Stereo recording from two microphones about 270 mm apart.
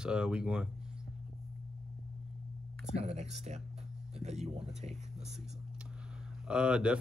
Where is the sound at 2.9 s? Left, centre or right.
Right.